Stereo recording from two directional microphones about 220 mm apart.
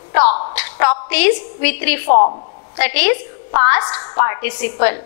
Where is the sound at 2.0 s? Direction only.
30° left (ahead or behind).